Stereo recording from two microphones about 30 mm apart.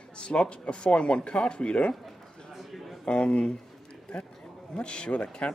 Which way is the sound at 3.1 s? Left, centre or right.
Left.